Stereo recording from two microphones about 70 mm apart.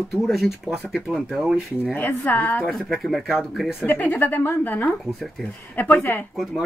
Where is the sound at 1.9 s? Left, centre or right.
Left.